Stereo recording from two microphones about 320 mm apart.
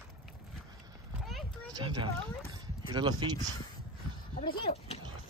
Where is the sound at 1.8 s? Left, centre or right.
Centre.